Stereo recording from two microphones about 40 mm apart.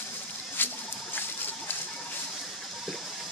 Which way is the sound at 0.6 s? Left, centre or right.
Left.